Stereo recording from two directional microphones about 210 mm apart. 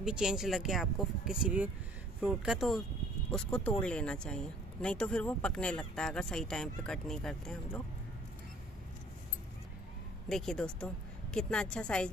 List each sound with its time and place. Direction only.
0.0 s speech: 5° right (ahead or behind)
10.2 s speech: centre (ahead or behind)